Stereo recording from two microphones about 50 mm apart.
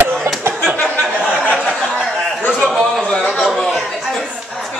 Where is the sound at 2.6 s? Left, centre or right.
Centre.